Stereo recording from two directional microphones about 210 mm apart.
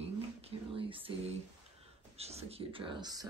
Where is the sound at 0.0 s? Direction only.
25° right (ahead or behind).